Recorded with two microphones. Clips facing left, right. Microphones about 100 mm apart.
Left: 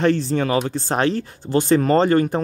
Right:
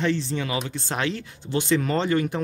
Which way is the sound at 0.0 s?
45° left (ahead or behind).